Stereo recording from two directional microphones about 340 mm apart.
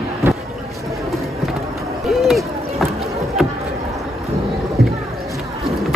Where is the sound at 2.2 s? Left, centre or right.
Centre.